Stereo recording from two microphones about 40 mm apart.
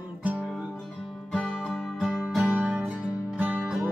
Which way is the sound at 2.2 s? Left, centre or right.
Centre.